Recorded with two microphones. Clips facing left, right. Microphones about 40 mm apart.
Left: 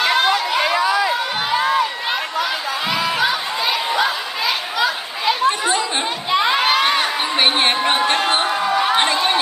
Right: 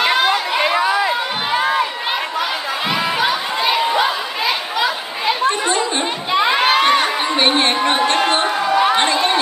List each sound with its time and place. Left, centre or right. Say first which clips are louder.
0.0 s chatter: right 1 dB; centre
6.3 s children shouting: right 2 dB; centre
7.3 s a sound: even; centre